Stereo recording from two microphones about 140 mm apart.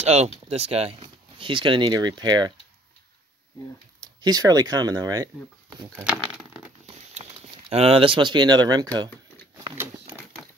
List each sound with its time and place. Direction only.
0.0 s speech: 50° right (ahead or behind); by 2.5 s 30° right (ahead or behind)
4.0 s speech: 30° right (ahead or behind)
6.9 s a sound: 50° right (ahead or behind)
7.7 s speech: 45° right (ahead or behind)